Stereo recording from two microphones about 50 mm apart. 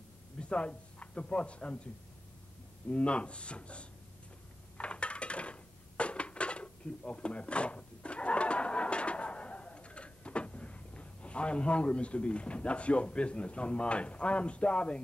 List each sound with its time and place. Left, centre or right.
0.4 s speech: left
2.9 s speech: left
4.7 s dishes: left